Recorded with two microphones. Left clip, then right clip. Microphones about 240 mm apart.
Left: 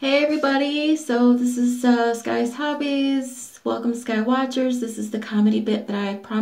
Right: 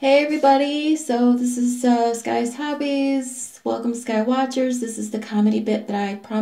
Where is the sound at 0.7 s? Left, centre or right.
Centre.